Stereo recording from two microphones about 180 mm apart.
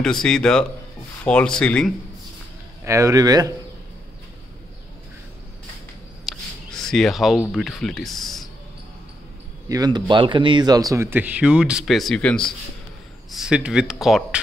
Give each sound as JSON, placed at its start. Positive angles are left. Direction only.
{"t": 0.0, "sound": "speech", "side_deg": 5}
{"t": 2.8, "sound": "speech", "side_deg": -15}
{"t": 6.2, "sound": "speech", "side_deg": 5}
{"t": 9.7, "sound": "speech", "side_deg": -20}